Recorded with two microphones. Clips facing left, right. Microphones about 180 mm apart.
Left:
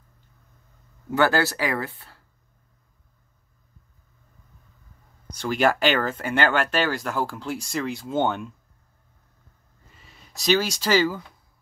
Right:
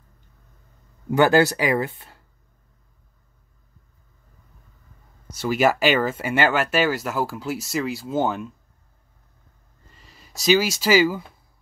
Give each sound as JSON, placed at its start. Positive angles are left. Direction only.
{"t": 1.1, "sound": "speech", "side_deg": -15}
{"t": 5.3, "sound": "speech", "side_deg": -5}
{"t": 9.8, "sound": "speech", "side_deg": 0}